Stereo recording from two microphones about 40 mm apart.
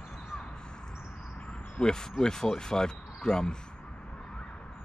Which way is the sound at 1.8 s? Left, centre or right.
Centre.